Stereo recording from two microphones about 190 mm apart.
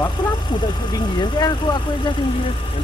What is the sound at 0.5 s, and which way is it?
Speech, 25° left (ahead or behind).